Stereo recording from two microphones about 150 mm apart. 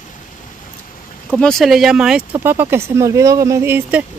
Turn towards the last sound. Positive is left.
turn(degrees=-15)  # may be behind; listen again after turning